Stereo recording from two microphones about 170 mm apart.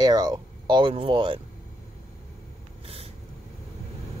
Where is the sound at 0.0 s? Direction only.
25° right (ahead or behind).